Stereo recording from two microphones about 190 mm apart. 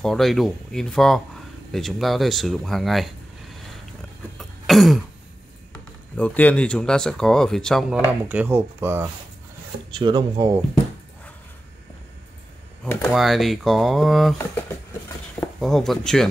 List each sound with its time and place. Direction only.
0.0 s speech: centre (ahead or behind)
4.4 s a sound: centre (ahead or behind)
5.7 s speech: 5° left (ahead or behind)
8.1 s speech: 10° right (ahead or behind)
9.8 s speech: 25° right (ahead or behind)
13.1 s speech: centre (ahead or behind)
15.6 s speech: centre (ahead or behind)